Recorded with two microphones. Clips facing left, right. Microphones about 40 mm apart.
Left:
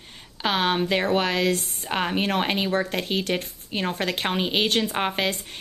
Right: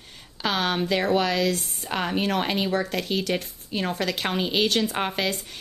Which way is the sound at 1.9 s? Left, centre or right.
Left.